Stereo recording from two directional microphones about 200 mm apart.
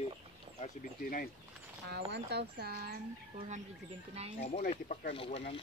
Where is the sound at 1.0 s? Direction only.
45° left (ahead or behind).